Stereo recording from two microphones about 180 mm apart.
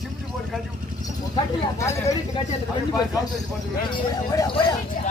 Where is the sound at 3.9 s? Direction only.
20° left (ahead or behind).